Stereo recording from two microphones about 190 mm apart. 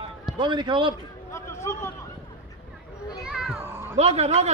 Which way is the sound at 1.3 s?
15° left (ahead or behind).